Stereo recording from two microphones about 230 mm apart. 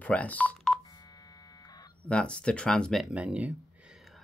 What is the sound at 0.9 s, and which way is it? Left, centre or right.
Buzzer, centre.